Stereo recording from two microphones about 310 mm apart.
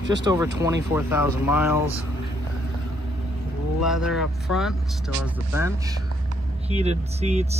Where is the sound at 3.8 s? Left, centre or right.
Centre.